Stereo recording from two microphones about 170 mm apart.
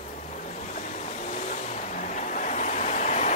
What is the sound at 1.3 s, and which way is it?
Vehicle, 45° left (ahead or behind).